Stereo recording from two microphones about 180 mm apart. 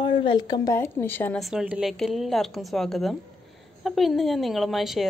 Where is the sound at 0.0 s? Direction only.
30° left (ahead or behind); by 1.4 s 10° left (ahead or behind).